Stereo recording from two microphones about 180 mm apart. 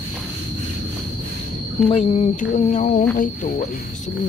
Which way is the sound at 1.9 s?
35° left (ahead or behind).